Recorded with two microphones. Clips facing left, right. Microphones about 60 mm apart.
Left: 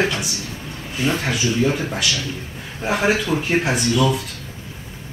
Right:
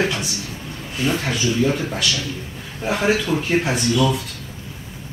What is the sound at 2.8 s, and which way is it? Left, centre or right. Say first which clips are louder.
A man's voice: even; centre.